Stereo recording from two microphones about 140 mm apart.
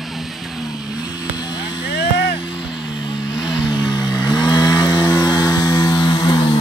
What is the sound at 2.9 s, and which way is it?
Vehicle, 35° left (ahead or behind).